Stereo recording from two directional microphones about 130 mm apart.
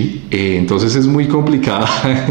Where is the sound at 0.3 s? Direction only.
20° right (ahead or behind).